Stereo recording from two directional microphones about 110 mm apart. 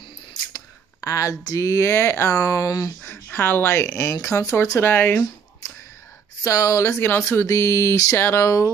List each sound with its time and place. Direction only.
1.0 s a woman's voice: 30° left (ahead or behind)
3.0 s speech: 15° left (ahead or behind)
6.4 s speech: 30° left (ahead or behind)